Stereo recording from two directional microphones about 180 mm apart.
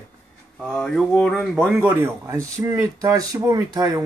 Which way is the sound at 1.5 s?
5° right (ahead or behind).